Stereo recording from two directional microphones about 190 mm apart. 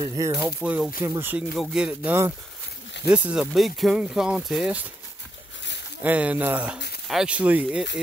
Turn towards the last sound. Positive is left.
turn(degrees=-5)  # may be behind; listen again after turning